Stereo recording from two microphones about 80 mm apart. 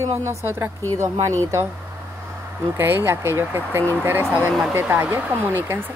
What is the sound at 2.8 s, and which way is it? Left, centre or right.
Speech, right.